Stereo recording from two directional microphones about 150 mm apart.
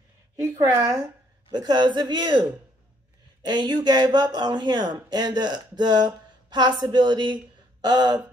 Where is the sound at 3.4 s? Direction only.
30° right (ahead or behind).